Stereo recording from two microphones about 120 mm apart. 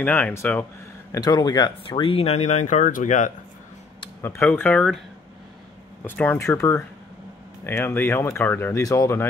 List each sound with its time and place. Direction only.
0.0 s speech: 15° left (ahead or behind)
1.1 s speech: 30° left (ahead or behind)
1.9 s speech: 50° left (ahead or behind); by 3.3 s 90° left
4.2 s speech: 20° left (ahead or behind)
6.0 s speech: 15° left (ahead or behind)